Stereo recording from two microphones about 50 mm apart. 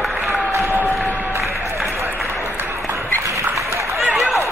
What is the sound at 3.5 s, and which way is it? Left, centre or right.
Run, right.